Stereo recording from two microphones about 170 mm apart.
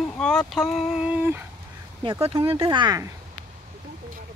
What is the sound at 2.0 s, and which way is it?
Speech, 30° right (ahead or behind).